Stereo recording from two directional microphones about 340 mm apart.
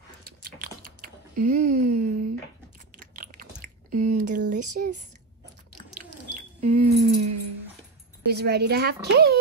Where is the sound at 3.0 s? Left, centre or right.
Right.